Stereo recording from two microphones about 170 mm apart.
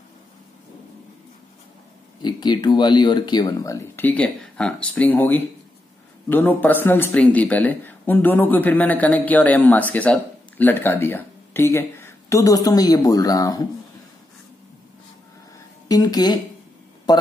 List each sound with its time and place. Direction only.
2.2 s speech: 25° left (ahead or behind)
15.9 s a man's voice: 25° left (ahead or behind)